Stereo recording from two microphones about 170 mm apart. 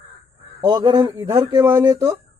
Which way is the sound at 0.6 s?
25° right (ahead or behind).